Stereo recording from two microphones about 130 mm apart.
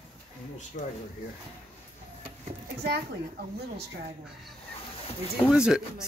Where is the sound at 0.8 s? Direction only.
85° left.